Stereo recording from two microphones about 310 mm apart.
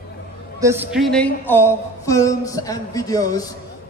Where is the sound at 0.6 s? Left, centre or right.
Centre.